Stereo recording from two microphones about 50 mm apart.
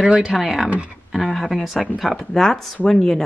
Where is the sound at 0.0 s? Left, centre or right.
Right.